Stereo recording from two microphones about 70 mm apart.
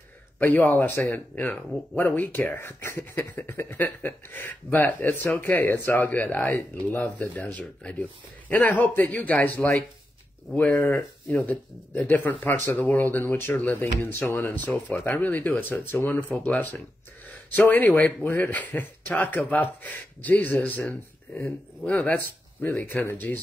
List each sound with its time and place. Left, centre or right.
0.4 s speech: left
14.0 s speech: left
22.8 s speech: left